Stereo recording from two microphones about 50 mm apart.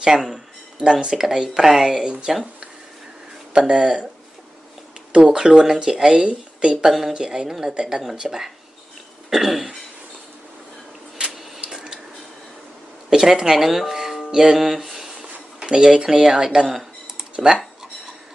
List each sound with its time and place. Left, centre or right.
0.0 s speech: centre
3.5 s speech: centre
5.1 s speech: centre
6.9 s speech: centre
9.3 s cough: centre
11.7 s squish: centre
13.1 s speech: centre
15.3 s speech: centre